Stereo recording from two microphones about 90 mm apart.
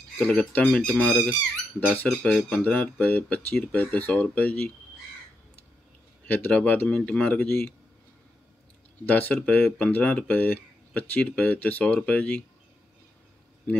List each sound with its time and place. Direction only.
0.2 s speech: 20° left (ahead or behind)
0.7 s speech: 10° left (ahead or behind)
2.6 s speech: 15° left (ahead or behind)
6.2 s speech: 20° left (ahead or behind)
9.0 s speech: 20° left (ahead or behind)